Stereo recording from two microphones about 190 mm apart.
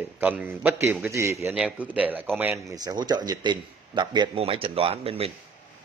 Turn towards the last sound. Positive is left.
turn(degrees=-30)  # may be behind; listen again after turning